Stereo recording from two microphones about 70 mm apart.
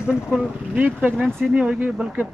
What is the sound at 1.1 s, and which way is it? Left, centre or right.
Speech, centre.